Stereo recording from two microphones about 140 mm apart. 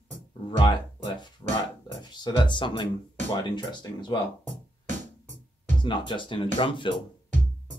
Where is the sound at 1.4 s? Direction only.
20° left (ahead or behind).